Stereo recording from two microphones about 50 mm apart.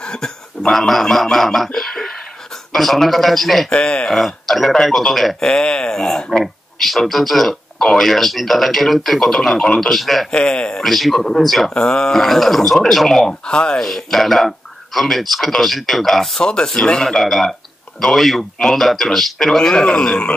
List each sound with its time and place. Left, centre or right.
0.0 s a man's voice: centre
3.7 s a man's voice: centre
4.1 s speech: centre
5.5 s speech: centre
10.3 s a man's voice: centre
10.8 s speech: centre
11.7 s a man's voice: centre
13.8 s speech: centre
16.3 s a man's voice: centre